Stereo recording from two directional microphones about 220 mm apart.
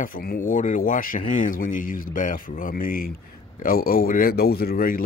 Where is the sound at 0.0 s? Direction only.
40° left (ahead or behind).